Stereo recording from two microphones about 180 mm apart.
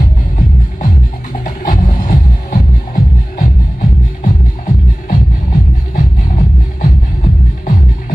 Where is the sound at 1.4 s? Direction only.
50° left (ahead or behind).